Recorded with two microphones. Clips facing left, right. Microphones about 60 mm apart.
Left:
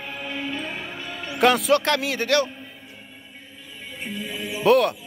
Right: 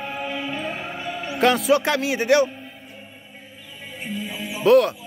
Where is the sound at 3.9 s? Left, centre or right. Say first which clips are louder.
Right 1 dB; centre.